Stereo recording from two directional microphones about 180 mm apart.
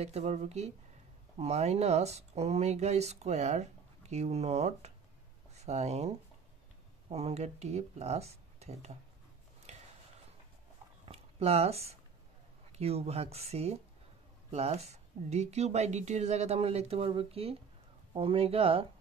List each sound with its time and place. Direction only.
0.0 s speech: 35° right (ahead or behind)
11.1 s a sound: 35° right (ahead or behind)
12.7 s speech: 35° right (ahead or behind)